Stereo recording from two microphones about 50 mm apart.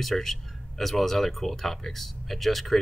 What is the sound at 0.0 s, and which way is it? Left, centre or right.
Speech, centre.